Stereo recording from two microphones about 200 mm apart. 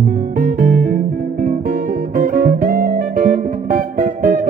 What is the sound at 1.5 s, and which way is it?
Guitar, 40° right (ahead or behind).